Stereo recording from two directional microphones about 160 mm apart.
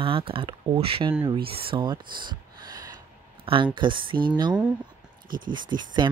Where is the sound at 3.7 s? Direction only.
30° right (ahead or behind).